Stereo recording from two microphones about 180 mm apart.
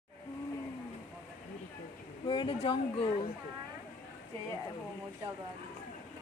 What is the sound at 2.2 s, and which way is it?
Speech, 25° left (ahead or behind).